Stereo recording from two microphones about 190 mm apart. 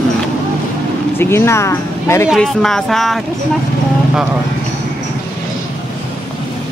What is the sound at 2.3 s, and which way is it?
Speech, centre (ahead or behind).